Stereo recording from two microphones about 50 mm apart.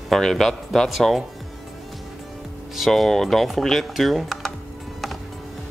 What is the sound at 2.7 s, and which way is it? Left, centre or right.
Speech, centre.